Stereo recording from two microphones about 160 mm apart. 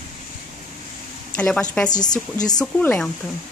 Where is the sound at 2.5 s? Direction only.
5° left (ahead or behind).